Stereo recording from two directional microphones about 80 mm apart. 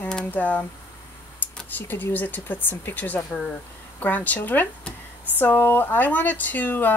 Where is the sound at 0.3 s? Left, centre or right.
Centre.